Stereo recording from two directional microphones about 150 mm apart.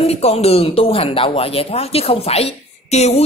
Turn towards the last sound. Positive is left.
turn(degrees=45)  # may be behind; listen again after turning